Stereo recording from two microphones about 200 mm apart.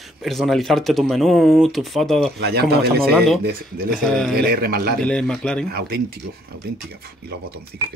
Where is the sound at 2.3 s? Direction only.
55° right (ahead or behind).